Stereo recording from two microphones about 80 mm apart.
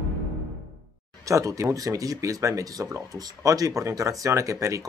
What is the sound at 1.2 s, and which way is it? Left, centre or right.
Speech, right.